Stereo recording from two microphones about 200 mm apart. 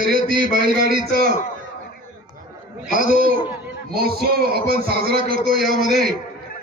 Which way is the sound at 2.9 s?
45° right (ahead or behind).